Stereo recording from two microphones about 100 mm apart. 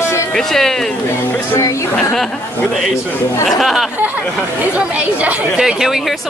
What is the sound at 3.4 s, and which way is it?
Speech, centre (ahead or behind).